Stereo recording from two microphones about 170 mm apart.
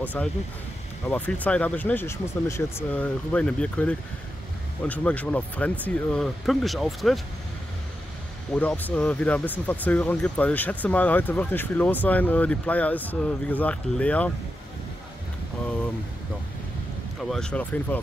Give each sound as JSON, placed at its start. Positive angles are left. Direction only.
{"t": 0.0, "sound": "speech", "side_deg": 10}
{"t": 8.5, "sound": "speech", "side_deg": 10}
{"t": 17.2, "sound": "speech", "side_deg": 5}